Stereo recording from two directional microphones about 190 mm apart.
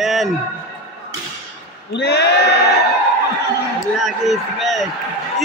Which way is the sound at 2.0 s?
60° left (ahead or behind).